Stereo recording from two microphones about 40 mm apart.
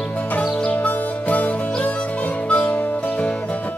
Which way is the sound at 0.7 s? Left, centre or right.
Left.